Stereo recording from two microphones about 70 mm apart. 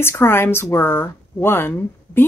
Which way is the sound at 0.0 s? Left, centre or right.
Left.